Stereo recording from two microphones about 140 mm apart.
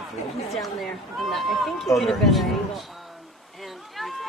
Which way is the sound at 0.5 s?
Centre (ahead or behind).